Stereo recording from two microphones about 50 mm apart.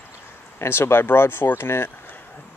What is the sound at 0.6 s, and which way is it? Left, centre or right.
Speech, left.